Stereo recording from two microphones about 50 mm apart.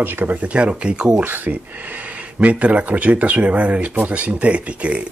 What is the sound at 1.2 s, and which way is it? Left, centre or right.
Speech, right.